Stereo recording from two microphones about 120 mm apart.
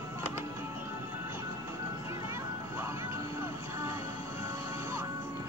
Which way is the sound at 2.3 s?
20° right (ahead or behind).